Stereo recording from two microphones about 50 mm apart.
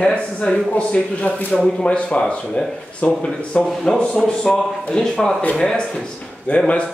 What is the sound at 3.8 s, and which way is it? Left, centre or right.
Speech, centre.